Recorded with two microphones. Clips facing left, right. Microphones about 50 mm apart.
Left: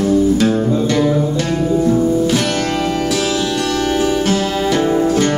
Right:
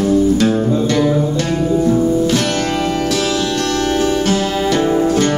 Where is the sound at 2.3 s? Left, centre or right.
Centre.